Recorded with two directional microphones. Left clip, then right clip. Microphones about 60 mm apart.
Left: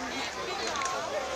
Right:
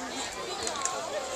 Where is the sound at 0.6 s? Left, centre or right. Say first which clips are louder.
Left 1 dB; right.